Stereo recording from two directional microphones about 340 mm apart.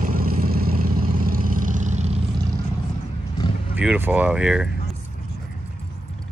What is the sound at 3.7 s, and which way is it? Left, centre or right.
Speech, centre.